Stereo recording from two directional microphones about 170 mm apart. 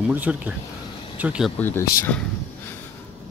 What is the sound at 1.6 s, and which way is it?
Speech, 15° left (ahead or behind).